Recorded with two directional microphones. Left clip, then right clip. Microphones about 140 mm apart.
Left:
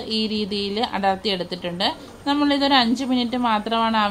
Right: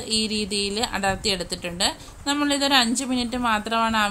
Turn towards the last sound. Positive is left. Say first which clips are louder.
# left 2 dB
turn(degrees=-10)  # may be behind; listen again after turning